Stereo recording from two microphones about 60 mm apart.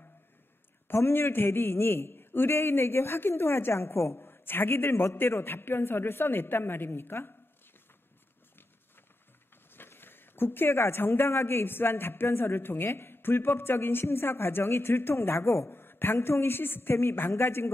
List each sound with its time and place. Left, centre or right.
0.8 s speech: left
9.7 s speech: left